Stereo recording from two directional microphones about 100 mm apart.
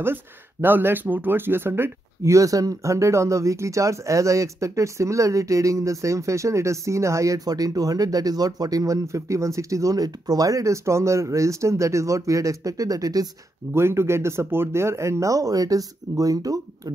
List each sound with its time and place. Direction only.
0.0 s speech: 20° right (ahead or behind); by 13.3 s 40° right (ahead or behind)
13.7 s speech: 25° right (ahead or behind)